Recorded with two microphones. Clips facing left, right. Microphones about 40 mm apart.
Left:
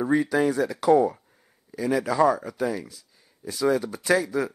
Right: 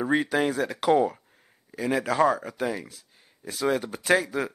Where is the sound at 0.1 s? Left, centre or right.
Right.